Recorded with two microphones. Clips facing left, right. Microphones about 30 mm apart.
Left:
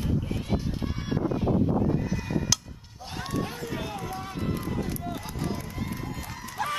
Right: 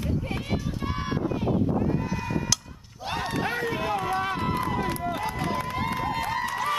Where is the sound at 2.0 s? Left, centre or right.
Centre.